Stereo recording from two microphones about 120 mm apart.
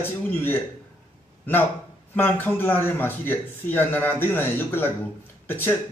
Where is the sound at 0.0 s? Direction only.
15° left (ahead or behind).